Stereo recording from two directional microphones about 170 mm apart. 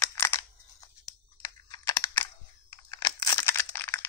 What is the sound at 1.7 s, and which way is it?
Computer keyboard, 20° left (ahead or behind).